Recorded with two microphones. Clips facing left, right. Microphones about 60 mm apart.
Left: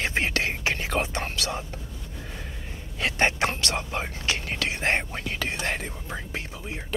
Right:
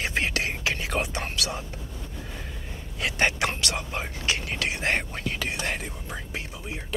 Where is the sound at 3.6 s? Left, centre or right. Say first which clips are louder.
Left 1 dB; left.